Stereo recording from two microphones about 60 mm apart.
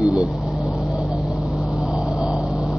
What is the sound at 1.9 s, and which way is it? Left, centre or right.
Vehicle, centre.